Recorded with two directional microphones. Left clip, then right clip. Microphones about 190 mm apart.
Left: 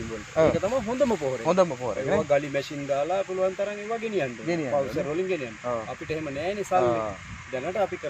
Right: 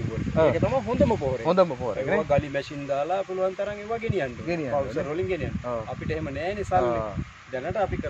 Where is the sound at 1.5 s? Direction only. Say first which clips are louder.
Right 1 dB; 30° right (ahead or behind).